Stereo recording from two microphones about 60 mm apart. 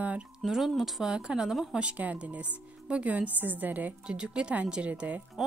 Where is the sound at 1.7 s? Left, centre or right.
Right.